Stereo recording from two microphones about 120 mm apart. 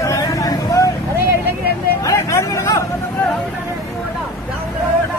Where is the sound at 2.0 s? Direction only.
25° left (ahead or behind).